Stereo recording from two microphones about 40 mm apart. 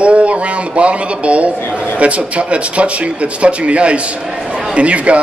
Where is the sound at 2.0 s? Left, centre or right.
Right.